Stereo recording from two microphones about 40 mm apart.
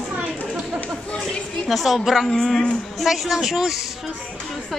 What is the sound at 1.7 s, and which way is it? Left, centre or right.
Speech, centre.